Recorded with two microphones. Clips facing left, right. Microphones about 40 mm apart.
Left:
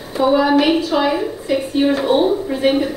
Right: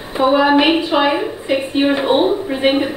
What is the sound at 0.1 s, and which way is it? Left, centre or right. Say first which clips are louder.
A woman's voice: right 1 dB; right.